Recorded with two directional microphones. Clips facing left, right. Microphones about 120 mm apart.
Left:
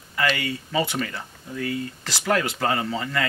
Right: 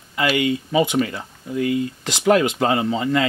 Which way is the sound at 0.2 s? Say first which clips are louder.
Right 5 dB; 15° right (ahead or behind).